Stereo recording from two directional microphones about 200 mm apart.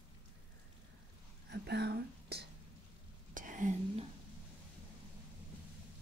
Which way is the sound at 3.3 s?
40° right (ahead or behind).